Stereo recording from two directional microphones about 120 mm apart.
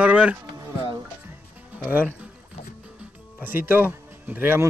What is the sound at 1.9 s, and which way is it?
Speech, 10° right (ahead or behind).